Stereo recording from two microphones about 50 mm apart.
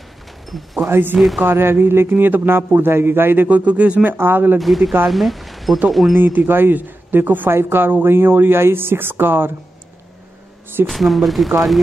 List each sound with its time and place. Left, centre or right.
0.8 s a man's voice: right
1.1 s speech: centre
1.4 s a man's voice: right
3.4 s speech: right
4.0 s a man's voice: right
4.6 s speech: centre
6.1 s a man's voice: right
10.9 s speech: centre